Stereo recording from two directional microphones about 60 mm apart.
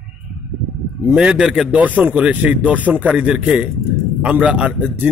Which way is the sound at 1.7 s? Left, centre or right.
Right.